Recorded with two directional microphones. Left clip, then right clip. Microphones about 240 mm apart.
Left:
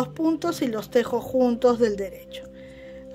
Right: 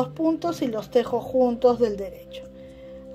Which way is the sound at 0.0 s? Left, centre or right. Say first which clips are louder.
Right 1 dB; centre.